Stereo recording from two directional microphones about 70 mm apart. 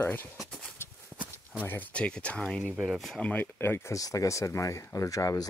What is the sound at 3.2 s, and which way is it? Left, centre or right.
Speech, left.